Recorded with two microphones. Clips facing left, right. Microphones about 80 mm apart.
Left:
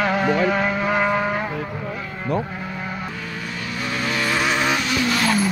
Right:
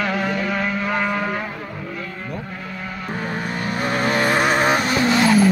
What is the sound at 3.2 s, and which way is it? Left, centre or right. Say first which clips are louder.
Vehicle: right 5 dB; right.